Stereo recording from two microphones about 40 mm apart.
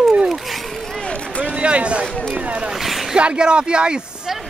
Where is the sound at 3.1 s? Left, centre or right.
Right.